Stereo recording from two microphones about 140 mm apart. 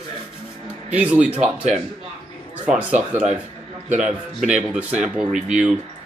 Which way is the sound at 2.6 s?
10° right (ahead or behind).